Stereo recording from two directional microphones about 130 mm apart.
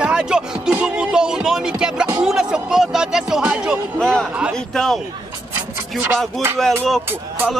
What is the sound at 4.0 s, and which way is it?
Speech, 5° left (ahead or behind).